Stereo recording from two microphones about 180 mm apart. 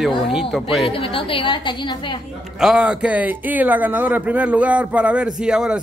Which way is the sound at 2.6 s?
5° right (ahead or behind).